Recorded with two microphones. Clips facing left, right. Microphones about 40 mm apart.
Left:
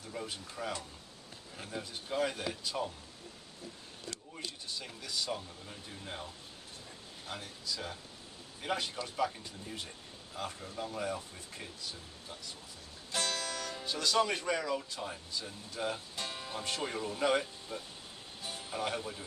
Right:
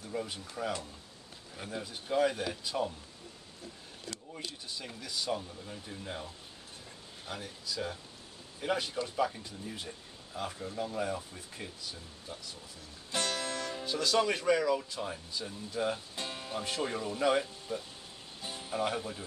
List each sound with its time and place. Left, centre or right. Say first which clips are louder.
0.1 s speech: right 4 dB; centre
4.3 s speech: even; centre
7.3 s speech: right 3 dB; centre
13.1 s music: right 2 dB; centre
14.2 s speech: right 5 dB; centre